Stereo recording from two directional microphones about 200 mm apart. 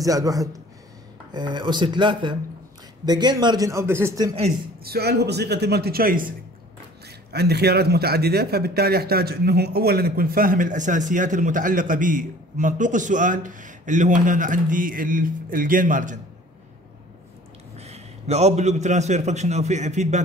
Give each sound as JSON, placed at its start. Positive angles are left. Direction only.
{"t": 0.0, "sound": "a man's voice", "side_deg": -15}
{"t": 4.8, "sound": "a man's voice", "side_deg": -50}
{"t": 17.7, "sound": "a man's voice", "side_deg": -35}